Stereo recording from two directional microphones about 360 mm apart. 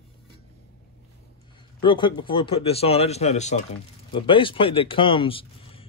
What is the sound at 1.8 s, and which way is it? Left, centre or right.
Speech, centre.